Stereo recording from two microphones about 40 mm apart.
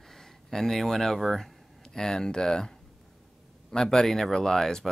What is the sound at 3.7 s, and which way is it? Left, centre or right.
Speech, centre.